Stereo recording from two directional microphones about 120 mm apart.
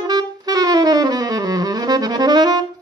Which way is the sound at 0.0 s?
35° right (ahead or behind).